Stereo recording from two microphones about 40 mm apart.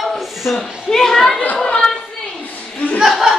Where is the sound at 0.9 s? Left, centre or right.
Centre.